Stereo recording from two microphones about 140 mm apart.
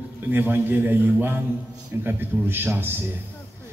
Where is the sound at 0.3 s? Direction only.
15° right (ahead or behind).